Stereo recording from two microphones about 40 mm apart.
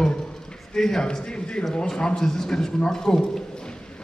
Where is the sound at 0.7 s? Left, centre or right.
Centre.